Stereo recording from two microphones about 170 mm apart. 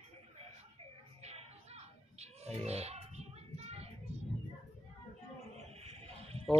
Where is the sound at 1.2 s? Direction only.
40° right (ahead or behind).